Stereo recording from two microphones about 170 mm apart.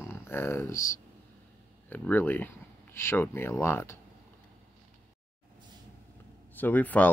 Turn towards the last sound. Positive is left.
turn(degrees=10)  # may be behind; listen again after turning